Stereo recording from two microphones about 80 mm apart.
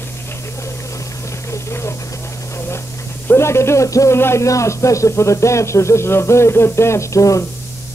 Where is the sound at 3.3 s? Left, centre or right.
Left.